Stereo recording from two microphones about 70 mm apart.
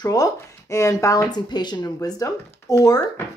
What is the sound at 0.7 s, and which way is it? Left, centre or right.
Speech, left.